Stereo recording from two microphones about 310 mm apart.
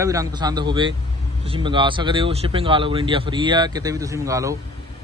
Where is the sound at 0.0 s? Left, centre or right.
Centre.